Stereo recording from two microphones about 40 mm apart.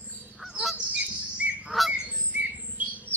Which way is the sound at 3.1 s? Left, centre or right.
Left.